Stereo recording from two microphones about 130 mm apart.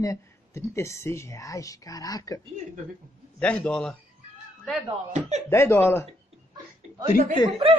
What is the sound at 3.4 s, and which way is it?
Speech, 10° left (ahead or behind).